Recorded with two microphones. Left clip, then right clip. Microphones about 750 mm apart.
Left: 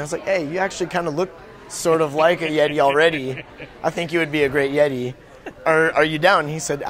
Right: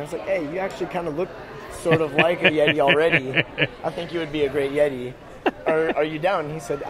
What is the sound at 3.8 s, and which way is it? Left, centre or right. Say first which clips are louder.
A man's voice: left 6 dB; left.